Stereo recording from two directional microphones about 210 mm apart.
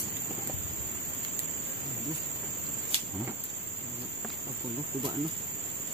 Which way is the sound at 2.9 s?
25° right (ahead or behind).